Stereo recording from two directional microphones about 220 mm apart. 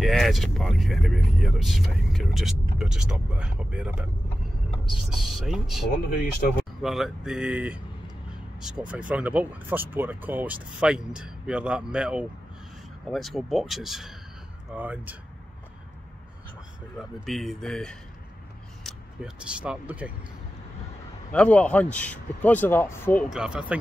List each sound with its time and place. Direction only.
0.0 s speech: centre (ahead or behind)
17.3 s speech: centre (ahead or behind)
21.3 s speech: 5° left (ahead or behind)
23.3 s speech: 5° right (ahead or behind)